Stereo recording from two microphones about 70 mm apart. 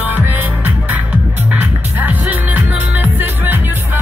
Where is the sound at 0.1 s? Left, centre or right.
Right.